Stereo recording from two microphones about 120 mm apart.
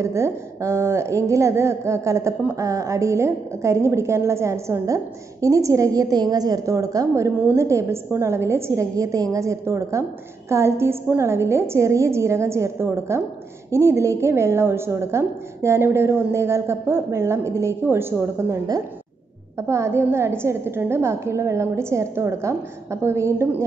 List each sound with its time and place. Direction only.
0.0 s a woman's voice: 25° right (ahead or behind)